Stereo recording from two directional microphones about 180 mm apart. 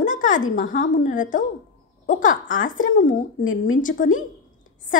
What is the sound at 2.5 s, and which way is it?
A woman's voice, 50° left (ahead or behind).